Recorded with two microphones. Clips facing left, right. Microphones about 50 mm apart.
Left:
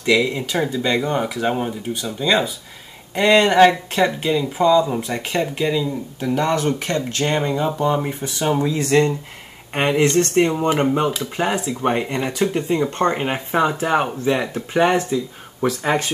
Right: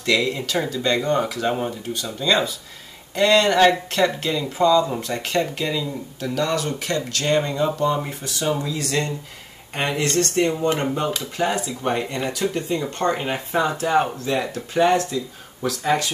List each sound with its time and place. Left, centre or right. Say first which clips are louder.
0.0 s speech: left 3 dB; centre
6.2 s speech: left 4 dB; left
11.3 s speech: left 2 dB; centre